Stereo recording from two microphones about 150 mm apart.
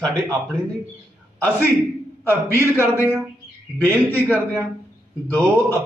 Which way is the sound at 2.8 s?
15° left (ahead or behind).